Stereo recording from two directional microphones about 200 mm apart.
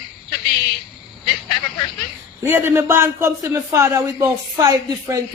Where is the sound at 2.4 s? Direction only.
10° right (ahead or behind).